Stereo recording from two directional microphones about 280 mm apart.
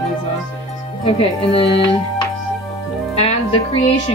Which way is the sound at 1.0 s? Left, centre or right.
Left.